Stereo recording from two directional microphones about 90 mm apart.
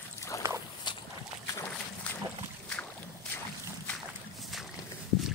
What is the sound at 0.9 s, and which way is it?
Boat, 60° left (ahead or behind).